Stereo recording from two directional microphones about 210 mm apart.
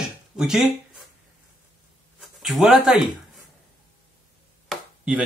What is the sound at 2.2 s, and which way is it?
Speech, centre (ahead or behind).